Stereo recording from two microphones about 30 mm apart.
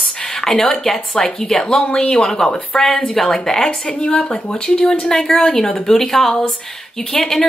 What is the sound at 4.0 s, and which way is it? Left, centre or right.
Speech, left.